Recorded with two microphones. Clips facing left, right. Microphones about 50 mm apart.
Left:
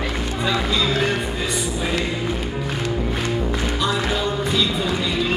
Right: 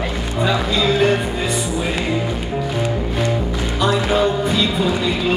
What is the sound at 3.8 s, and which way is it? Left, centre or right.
Music, right.